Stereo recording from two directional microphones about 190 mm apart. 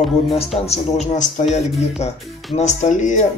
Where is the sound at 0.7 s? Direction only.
35° left (ahead or behind).